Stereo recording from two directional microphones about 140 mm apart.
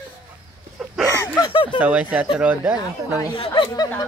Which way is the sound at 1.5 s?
35° left (ahead or behind).